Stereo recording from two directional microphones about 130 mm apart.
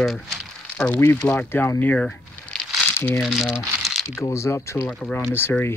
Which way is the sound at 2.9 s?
20° left (ahead or behind).